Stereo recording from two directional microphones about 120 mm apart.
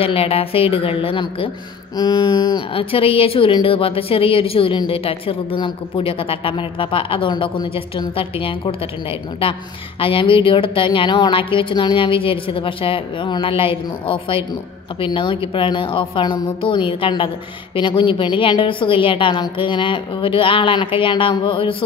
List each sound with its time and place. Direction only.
0.0 s a woman's voice: 55° left (ahead or behind)